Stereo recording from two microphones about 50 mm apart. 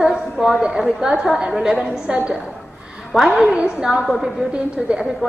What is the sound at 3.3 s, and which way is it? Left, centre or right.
A woman's voice, centre.